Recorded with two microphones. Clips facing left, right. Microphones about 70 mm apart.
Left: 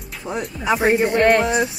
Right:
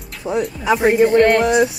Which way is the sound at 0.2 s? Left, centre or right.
Centre.